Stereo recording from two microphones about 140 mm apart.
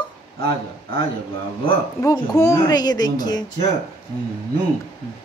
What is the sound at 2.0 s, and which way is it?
A woman's voice, 25° left (ahead or behind).